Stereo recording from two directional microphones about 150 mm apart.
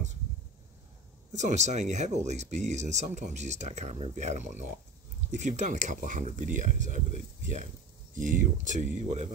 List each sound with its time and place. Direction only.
1.3 s speech: 50° right (ahead or behind)